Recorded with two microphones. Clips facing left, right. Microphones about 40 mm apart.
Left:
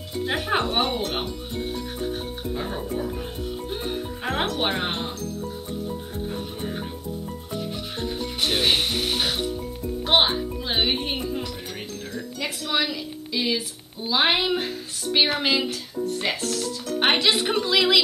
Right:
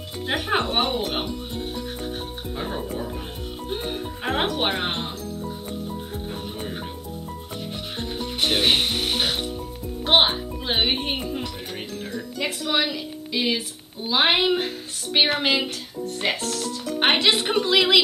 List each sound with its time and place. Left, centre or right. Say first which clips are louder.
0.3 s speech: right 1 dB; centre
8.0 s music: right 1 dB; centre
10.0 s speech: right 2 dB; centre